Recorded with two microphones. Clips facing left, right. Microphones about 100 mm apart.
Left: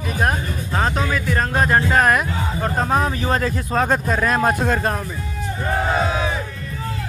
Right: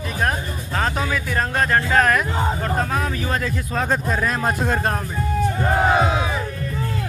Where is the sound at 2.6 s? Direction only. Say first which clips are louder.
Left 3 dB; 30° left (ahead or behind); by 4.6 s 65° left (ahead or behind).